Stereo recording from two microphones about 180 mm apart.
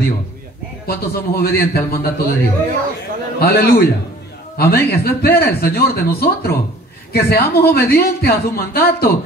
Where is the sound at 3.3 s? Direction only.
60° left (ahead or behind).